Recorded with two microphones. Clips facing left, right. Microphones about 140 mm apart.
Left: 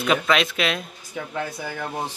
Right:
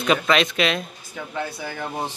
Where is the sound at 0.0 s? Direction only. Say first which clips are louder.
Right 1 dB; 5° left (ahead or behind).